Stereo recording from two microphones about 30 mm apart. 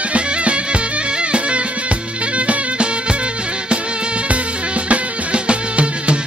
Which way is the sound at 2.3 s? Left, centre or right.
Right.